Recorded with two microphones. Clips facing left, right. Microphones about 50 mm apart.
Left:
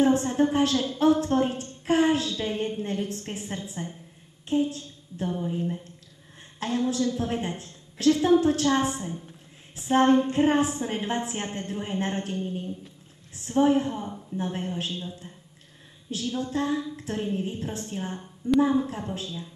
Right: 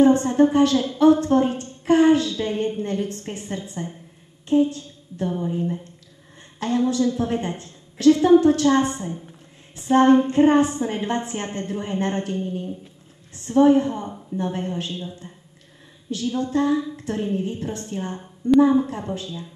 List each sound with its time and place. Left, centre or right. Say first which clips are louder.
0.0 s a woman's voice: right 6 dB; centre